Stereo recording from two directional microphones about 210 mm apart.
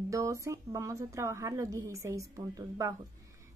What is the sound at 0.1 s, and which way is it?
A woman's voice, 15° right (ahead or behind).